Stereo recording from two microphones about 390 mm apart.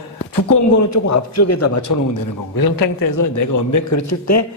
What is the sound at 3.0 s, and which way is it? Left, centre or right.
A man's voice, left.